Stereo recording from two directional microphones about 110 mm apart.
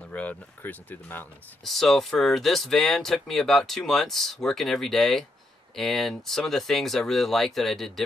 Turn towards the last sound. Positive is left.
turn(degrees=0)  # may be behind; listen again after turning